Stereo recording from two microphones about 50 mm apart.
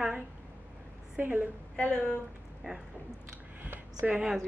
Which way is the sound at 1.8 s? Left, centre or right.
Left.